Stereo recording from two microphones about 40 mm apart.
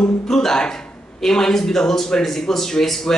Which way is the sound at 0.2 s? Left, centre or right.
Centre.